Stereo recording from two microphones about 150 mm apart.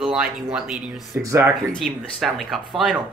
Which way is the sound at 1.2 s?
20° right (ahead or behind).